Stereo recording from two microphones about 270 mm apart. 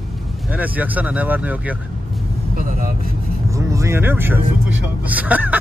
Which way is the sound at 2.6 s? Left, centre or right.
Right.